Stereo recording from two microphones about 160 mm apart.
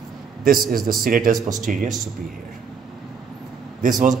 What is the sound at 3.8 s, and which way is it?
Speech, 55° right (ahead or behind).